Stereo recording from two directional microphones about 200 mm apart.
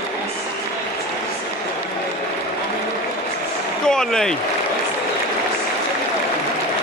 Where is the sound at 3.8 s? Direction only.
5° left (ahead or behind).